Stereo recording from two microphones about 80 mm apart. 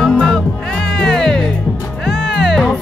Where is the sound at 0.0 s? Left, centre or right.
Centre.